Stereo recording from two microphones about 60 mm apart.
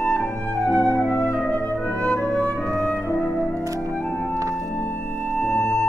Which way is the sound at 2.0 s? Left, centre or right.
Centre.